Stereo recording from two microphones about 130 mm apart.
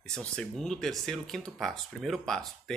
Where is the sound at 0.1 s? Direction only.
5° left (ahead or behind).